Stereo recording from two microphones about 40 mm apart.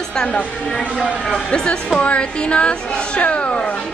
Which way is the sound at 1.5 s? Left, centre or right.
Left.